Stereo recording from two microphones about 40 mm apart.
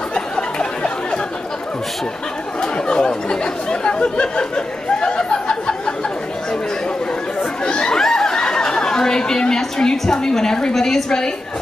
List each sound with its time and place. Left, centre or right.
0.1 s a sound: left
2.6 s speech: left
7.6 s chatter: left
8.0 s speech: centre